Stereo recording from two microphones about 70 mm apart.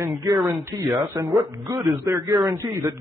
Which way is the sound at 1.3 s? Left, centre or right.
Right.